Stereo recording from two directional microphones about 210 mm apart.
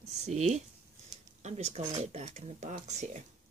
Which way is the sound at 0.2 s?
35° right (ahead or behind).